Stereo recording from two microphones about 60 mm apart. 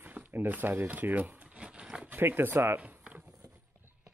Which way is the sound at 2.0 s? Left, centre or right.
Right.